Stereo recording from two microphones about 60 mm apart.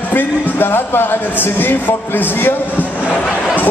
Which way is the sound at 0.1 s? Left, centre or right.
Left.